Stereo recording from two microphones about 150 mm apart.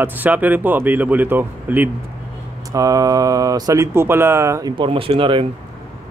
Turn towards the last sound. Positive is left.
turn(degrees=-35)  # may be behind; listen again after turning